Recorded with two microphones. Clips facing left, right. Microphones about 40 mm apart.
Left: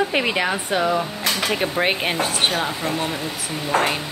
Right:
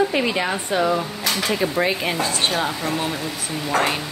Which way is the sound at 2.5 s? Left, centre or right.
Centre.